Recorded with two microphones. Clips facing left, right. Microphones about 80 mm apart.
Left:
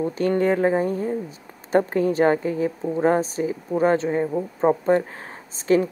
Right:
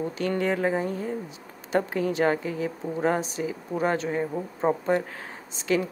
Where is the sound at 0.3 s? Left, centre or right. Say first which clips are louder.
Left 6 dB; left.